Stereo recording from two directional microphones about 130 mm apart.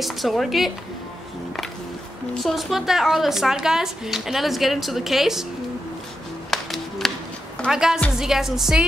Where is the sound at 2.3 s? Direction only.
Centre (ahead or behind).